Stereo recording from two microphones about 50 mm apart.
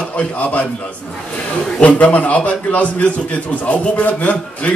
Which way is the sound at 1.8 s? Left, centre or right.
Left.